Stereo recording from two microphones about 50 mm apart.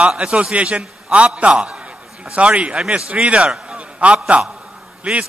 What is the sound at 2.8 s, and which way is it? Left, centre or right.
Speech, centre.